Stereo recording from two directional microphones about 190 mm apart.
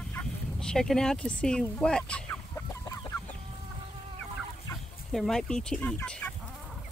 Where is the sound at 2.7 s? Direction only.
15° left (ahead or behind).